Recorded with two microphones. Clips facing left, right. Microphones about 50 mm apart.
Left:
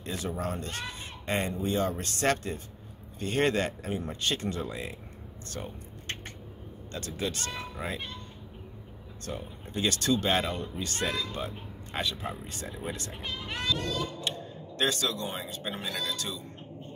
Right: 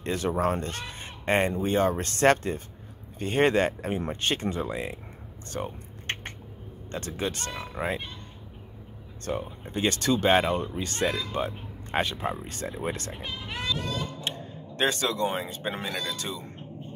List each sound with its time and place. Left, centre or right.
0.0 s speech: right
4.5 s speech: right
6.1 s squish: right
6.9 s speech: right
9.2 s speech: right
13.1 s speech: centre
14.2 s speech: right
15.8 s speech: centre